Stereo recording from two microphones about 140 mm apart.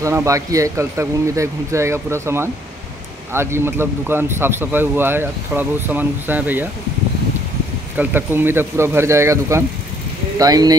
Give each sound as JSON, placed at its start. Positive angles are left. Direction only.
{"t": 0.0, "sound": "speech", "side_deg": -20}
{"t": 8.0, "sound": "speech", "side_deg": -15}